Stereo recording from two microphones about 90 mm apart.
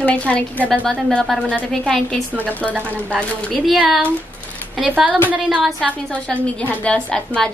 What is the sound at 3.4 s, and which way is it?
Speech, centre (ahead or behind).